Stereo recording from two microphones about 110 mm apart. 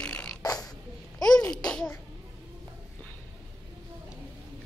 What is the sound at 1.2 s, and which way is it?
Speech, 5° left (ahead or behind).